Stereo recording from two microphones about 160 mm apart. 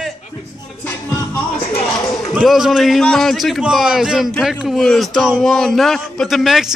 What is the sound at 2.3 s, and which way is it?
A man's voice, centre (ahead or behind).